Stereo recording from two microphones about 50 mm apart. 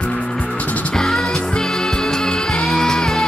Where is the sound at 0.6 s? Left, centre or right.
Left.